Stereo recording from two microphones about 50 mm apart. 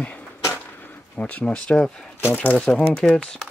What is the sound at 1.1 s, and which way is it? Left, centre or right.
Speech, left.